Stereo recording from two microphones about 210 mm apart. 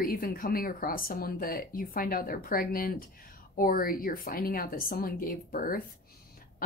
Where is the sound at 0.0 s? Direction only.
40° left (ahead or behind).